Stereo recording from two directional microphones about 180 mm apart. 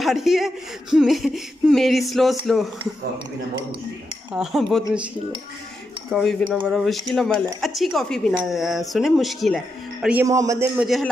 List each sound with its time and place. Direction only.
0.0 s speech: centre (ahead or behind)
4.3 s speech: 5° right (ahead or behind)
6.5 s speech: centre (ahead or behind)
10.2 s a man's voice: 20° right (ahead or behind)
10.8 s speech: centre (ahead or behind)